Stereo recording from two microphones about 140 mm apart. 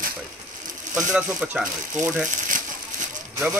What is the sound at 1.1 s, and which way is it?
Speech, 10° right (ahead or behind).